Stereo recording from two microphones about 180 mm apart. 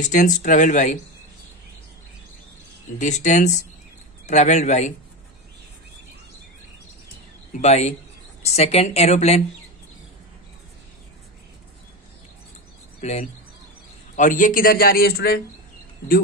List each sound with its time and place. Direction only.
0.0 s speech: 45° left (ahead or behind)
3.0 s speech: 40° left (ahead or behind)
7.5 s speech: 40° left (ahead or behind)
13.0 s a man's voice: 40° left (ahead or behind); by 15.4 s 60° left (ahead or behind)